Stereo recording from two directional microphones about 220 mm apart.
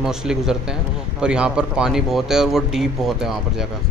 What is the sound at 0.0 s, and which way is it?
Speech, 5° right (ahead or behind).